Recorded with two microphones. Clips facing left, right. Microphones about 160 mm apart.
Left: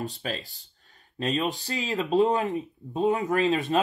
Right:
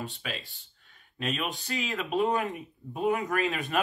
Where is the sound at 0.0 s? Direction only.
40° left (ahead or behind).